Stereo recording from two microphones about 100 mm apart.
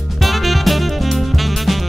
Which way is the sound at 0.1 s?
Centre (ahead or behind).